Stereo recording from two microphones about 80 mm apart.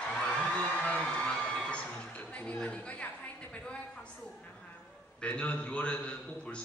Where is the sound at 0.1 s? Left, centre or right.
Centre.